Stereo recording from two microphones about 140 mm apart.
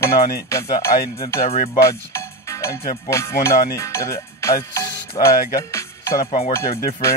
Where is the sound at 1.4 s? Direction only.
50° left (ahead or behind).